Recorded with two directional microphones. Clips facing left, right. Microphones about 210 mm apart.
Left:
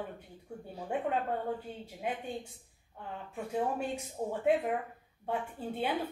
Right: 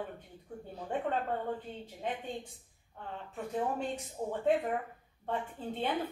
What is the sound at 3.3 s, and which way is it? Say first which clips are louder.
A woman's voice: left 1 dB; 10° left (ahead or behind).